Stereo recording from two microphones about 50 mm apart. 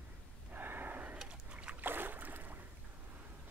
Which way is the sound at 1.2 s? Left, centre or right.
Right.